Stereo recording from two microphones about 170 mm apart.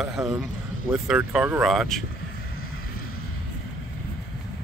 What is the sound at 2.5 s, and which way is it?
Vehicle, 60° left (ahead or behind).